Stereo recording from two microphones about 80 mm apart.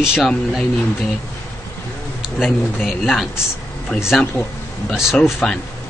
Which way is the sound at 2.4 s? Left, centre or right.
Centre.